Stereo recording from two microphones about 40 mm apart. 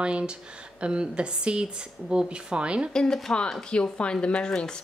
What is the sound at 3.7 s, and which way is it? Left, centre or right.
Speech, left.